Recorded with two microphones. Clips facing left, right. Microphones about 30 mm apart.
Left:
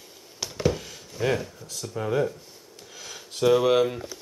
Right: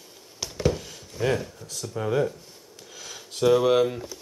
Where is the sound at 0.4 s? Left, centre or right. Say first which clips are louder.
Even; centre.